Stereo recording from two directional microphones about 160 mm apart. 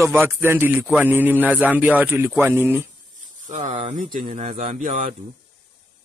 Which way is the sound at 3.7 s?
45° right (ahead or behind).